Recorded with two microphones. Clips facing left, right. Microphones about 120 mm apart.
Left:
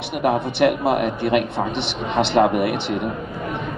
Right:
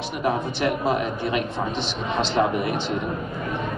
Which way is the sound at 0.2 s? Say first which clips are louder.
Left 6 dB; 65° left (ahead or behind).